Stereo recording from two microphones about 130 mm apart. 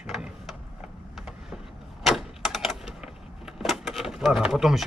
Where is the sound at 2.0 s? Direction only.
Centre (ahead or behind).